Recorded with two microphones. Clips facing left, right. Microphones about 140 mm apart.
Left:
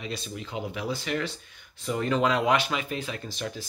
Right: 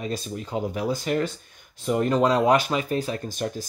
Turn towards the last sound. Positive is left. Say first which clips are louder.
# right 5 dB
turn(degrees=-45)  # may be behind; listen again after turning